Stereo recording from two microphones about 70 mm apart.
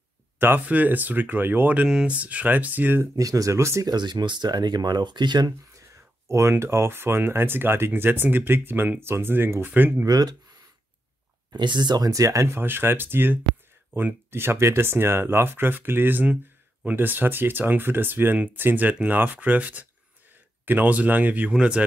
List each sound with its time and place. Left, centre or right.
0.4 s speech: right
1.9 s speech: centre
2.1 s speech: right
3.2 s speech: right
3.8 s speech: right
5.8 s a sound: right
6.5 s speech: right
10.0 s speech: right
11.5 s speech: right
12.1 s speech: right
12.4 s speech: right; by 21.8 s centre